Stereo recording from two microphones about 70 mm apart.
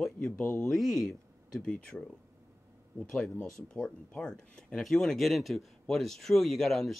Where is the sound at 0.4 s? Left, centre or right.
Left.